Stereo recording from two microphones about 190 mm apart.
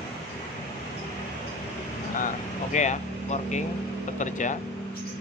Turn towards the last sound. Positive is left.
turn(degrees=40)  # may be behind; listen again after turning